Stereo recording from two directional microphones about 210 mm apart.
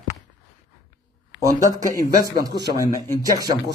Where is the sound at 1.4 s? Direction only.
15° right (ahead or behind).